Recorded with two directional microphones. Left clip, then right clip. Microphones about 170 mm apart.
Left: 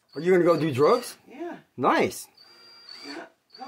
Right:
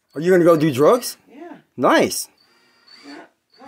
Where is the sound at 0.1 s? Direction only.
35° right (ahead or behind).